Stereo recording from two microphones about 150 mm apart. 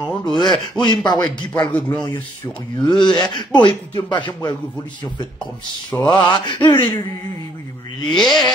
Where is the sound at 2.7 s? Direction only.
30° left (ahead or behind).